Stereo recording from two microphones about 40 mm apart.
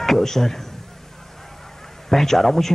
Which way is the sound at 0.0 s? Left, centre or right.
Centre.